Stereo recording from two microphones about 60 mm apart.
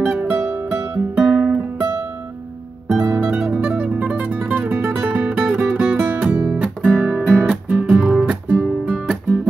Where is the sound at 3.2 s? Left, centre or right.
Right.